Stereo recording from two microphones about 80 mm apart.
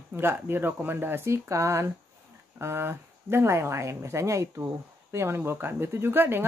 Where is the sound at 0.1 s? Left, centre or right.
Right.